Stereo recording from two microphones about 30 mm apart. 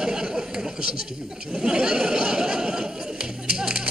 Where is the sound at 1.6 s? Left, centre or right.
Right.